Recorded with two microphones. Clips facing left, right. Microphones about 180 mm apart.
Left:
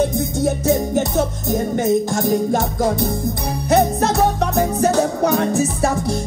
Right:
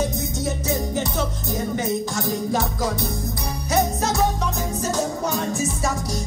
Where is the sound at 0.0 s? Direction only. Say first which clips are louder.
Left 7 dB; 55° left (ahead or behind).